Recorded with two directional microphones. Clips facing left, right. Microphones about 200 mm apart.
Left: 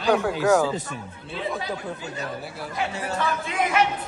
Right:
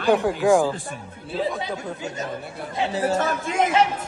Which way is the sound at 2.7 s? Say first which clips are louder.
Right 6 dB; 30° right (ahead or behind).